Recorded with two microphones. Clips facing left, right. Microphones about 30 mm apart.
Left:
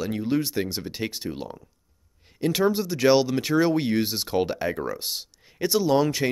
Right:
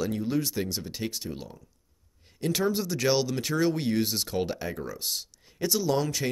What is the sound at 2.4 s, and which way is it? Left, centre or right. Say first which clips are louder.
Speech: left 4 dB; centre.